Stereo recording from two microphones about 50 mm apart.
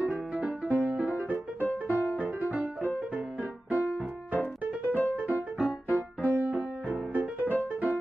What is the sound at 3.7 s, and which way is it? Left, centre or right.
Music, left.